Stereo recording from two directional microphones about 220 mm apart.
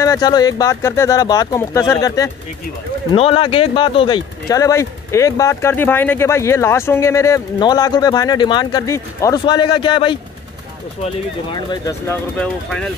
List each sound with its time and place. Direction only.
0.0 s speech: 15° left (ahead or behind)
11.5 s speech: 15° left (ahead or behind)